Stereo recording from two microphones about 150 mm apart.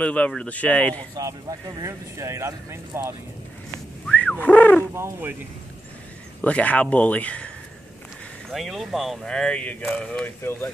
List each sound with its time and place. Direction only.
0.0 s speech: 10° left (ahead or behind)
1.1 s speech: 25° right (ahead or behind)
4.1 s a sound: 10° left (ahead or behind)
4.9 s speech: 20° right (ahead or behind)
6.4 s speech: 10° left (ahead or behind)